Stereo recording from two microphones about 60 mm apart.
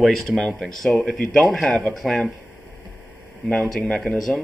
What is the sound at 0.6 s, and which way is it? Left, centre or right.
Speech, centre.